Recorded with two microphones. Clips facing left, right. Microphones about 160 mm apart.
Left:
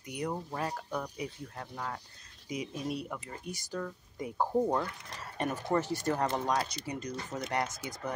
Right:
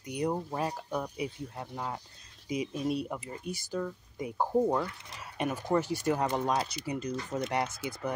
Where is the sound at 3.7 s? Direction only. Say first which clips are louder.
Right 3 dB; 5° right (ahead or behind).